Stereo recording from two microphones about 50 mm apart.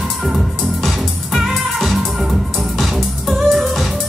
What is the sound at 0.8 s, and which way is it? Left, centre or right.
Music, centre.